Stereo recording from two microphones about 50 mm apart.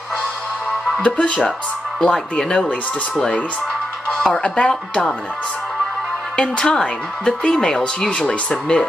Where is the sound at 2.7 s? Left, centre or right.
Left.